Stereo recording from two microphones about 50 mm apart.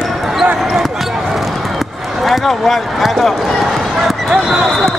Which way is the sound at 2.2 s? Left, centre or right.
Centre.